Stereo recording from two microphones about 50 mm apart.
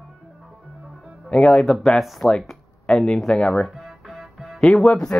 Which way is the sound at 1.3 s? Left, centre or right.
Centre.